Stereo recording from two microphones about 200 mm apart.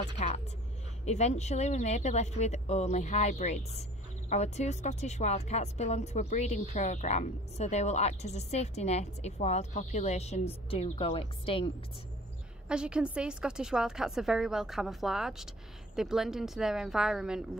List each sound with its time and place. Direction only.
0.2 s a sound: 35° left (ahead or behind)
1.0 s speech: 35° left (ahead or behind)
12.6 s a woman's voice: 5° right (ahead or behind)